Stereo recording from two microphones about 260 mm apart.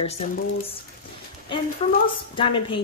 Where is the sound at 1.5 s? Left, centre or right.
Centre.